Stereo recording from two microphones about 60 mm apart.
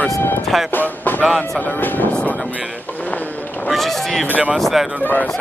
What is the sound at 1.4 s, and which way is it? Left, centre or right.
Speech, left.